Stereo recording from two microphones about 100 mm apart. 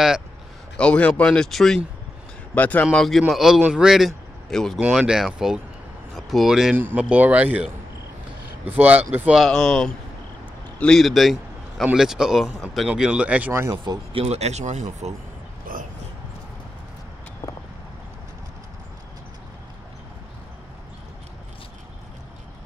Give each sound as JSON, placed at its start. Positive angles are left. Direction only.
{"t": 0.7, "sound": "speech", "side_deg": 10}
{"t": 2.5, "sound": "speech", "side_deg": 15}
{"t": 2.9, "sound": "speech", "side_deg": 0}
{"t": 4.7, "sound": "speech", "side_deg": -10}
{"t": 6.7, "sound": "speech", "side_deg": -20}
{"t": 9.3, "sound": "speech", "side_deg": 0}
{"t": 13.5, "sound": "speech", "side_deg": -30}
{"t": 14.1, "sound": "speech", "side_deg": -90}